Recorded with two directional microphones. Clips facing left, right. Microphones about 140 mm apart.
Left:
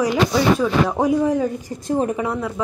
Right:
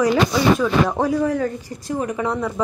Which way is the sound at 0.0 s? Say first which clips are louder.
Right 1 dB; 10° left (ahead or behind).